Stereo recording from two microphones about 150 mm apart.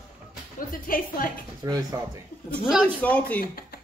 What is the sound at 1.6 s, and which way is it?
Speech, 20° right (ahead or behind).